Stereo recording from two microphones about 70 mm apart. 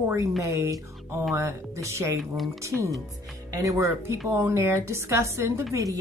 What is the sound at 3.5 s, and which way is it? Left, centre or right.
Speech, right.